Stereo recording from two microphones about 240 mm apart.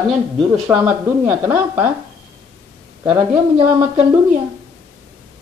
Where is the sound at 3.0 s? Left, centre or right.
Centre.